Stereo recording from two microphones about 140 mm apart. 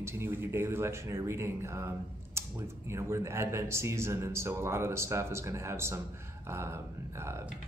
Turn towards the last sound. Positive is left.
turn(degrees=-20)  # may be behind; listen again after turning